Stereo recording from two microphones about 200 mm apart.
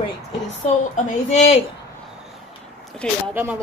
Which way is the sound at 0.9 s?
35° left (ahead or behind).